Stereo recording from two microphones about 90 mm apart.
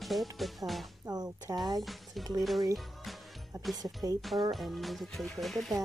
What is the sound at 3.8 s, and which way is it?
Speech, 40° right (ahead or behind).